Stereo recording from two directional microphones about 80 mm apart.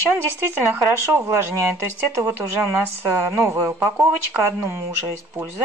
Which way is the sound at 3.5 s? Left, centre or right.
Right.